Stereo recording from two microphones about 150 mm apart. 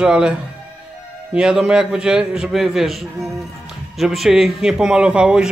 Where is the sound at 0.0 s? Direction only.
5° right (ahead or behind).